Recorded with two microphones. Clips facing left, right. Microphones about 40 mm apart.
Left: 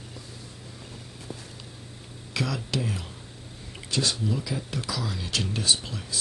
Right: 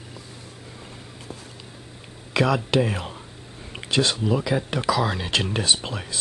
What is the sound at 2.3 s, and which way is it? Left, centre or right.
Speech, right.